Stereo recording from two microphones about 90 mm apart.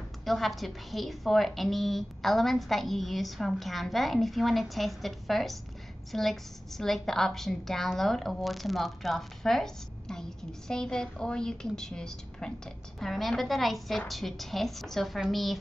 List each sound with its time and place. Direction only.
0.2 s a woman's voice: centre (ahead or behind)